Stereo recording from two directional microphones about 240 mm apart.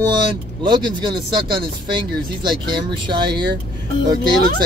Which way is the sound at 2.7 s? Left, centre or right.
Centre.